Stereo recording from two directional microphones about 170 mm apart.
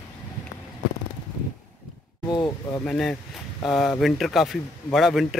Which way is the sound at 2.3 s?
25° left (ahead or behind).